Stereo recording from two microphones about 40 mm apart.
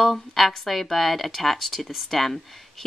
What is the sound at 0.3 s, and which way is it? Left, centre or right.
Speech, centre.